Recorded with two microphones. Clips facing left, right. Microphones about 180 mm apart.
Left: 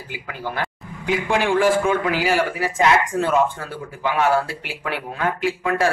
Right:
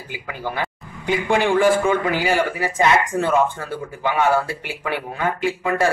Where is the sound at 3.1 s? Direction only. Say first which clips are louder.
Even; 20° right (ahead or behind).